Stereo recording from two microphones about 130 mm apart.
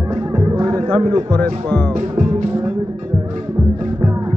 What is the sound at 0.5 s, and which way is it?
Music, 25° right (ahead or behind).